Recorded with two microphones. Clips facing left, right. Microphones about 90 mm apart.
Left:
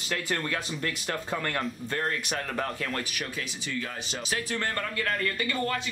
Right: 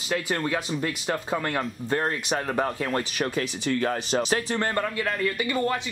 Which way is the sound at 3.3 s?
55° right (ahead or behind).